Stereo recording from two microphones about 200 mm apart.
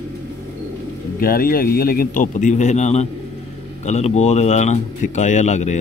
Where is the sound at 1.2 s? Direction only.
45° left (ahead or behind).